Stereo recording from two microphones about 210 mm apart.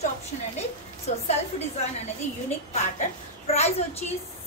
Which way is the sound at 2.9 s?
30° left (ahead or behind).